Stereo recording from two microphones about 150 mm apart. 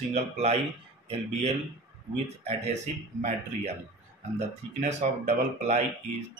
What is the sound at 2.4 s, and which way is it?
Speech, 45° right (ahead or behind).